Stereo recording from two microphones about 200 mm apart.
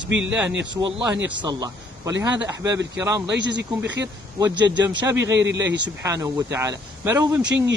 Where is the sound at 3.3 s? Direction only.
60° right (ahead or behind).